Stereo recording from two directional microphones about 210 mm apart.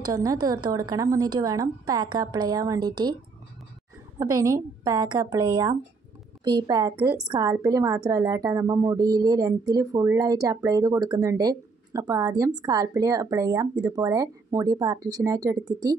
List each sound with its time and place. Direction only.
0.0 s a woman's voice: 20° right (ahead or behind)
4.2 s a woman's voice: 15° right (ahead or behind)